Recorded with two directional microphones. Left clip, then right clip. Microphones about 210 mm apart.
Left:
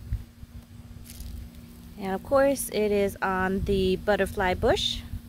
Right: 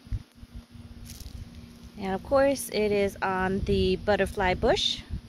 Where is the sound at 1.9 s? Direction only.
Centre (ahead or behind).